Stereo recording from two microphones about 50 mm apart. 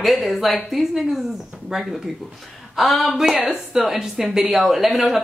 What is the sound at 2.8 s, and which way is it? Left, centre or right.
Speech, centre.